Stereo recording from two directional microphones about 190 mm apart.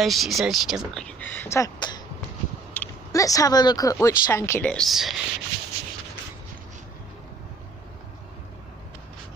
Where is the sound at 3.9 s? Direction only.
15° left (ahead or behind).